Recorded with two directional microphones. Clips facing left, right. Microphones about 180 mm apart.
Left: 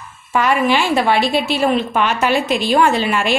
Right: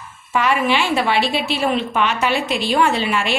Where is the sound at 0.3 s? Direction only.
45° left (ahead or behind).